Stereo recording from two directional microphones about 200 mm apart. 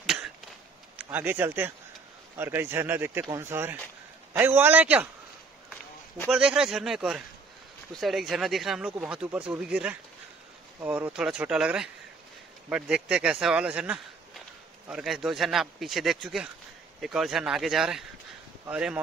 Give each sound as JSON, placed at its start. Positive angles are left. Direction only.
{"t": 0.0, "sound": "a sound", "side_deg": 0}
{"t": 0.9, "sound": "speech", "side_deg": -10}
{"t": 6.2, "sound": "speech", "side_deg": -5}